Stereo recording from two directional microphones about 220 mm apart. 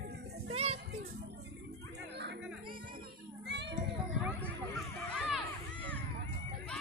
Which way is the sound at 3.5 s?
50° right (ahead or behind).